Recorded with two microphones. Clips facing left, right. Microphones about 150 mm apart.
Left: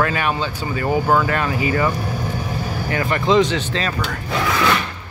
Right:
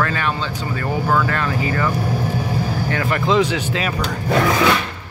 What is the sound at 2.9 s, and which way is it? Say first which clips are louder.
Speech: left 2 dB; centre (ahead or behind).